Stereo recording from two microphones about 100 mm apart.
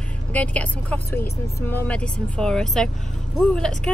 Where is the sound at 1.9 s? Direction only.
10° left (ahead or behind).